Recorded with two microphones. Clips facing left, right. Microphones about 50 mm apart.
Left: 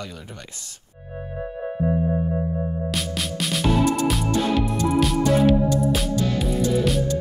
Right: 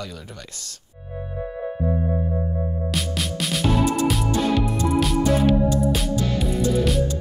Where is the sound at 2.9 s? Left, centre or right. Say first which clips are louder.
Right 1 dB; centre.